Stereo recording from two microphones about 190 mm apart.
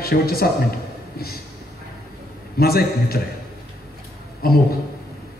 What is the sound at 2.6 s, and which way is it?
Speech, 55° left (ahead or behind).